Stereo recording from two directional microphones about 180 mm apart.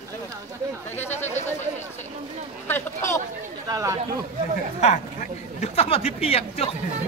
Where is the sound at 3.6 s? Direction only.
20° right (ahead or behind).